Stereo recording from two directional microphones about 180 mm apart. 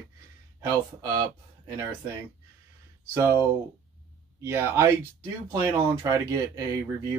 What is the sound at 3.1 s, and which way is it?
Speech, 15° right (ahead or behind).